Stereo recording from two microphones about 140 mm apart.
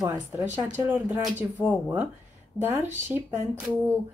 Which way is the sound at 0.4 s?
15° right (ahead or behind).